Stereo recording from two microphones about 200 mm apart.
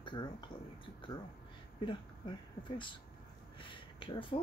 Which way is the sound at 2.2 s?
25° left (ahead or behind).